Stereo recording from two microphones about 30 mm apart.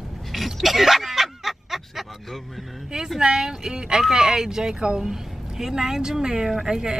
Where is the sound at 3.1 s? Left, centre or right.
Centre.